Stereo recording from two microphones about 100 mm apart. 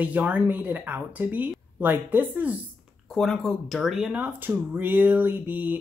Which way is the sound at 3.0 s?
5° left (ahead or behind).